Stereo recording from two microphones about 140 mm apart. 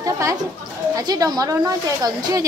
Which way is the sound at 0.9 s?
25° right (ahead or behind).